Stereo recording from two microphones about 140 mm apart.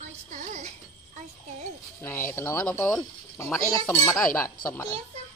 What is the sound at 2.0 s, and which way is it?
Speech, 15° left (ahead or behind).